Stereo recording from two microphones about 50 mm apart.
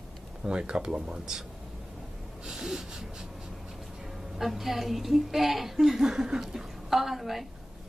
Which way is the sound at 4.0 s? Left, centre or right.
Centre.